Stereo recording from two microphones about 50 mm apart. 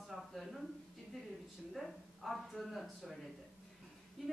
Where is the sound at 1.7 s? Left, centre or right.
Centre.